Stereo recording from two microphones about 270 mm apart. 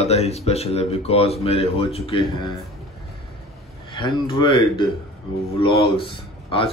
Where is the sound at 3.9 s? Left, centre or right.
Centre.